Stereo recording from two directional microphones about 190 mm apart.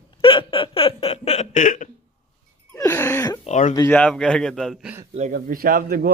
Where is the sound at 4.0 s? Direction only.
5° left (ahead or behind).